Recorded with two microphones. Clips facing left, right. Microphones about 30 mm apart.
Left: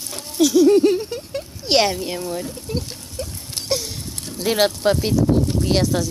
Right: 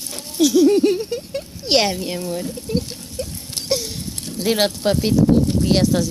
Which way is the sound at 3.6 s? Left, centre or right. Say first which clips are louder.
Right 1 dB; right.